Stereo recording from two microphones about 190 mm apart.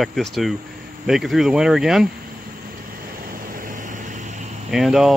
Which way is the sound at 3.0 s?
50° right (ahead or behind).